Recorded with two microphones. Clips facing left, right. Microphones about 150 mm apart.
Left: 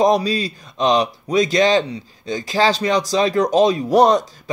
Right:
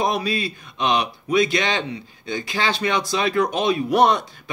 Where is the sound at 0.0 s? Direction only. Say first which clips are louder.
Left 6 dB; 35° left (ahead or behind).